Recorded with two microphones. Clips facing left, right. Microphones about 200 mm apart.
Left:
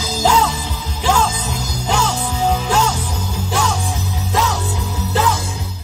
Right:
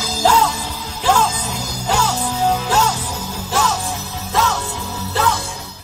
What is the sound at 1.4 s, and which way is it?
Music, 10° right (ahead or behind).